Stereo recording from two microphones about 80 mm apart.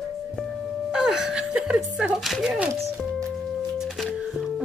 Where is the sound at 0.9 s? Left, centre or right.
Centre.